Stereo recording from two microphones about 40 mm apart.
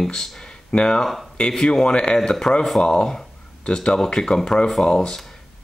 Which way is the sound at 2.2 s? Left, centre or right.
Centre.